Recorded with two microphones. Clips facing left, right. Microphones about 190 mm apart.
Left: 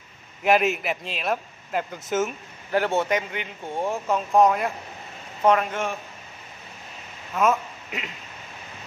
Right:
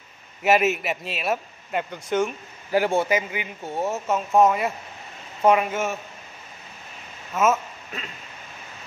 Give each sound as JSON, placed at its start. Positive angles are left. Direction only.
{"t": 0.4, "sound": "a man's voice", "side_deg": -5}
{"t": 2.7, "sound": "a man's voice", "side_deg": -10}
{"t": 7.3, "sound": "a man's voice", "side_deg": 0}
{"t": 7.9, "sound": "a sound", "side_deg": 15}